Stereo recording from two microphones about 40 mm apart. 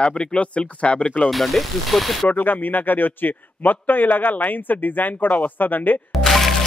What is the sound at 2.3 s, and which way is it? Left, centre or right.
A man's voice, left.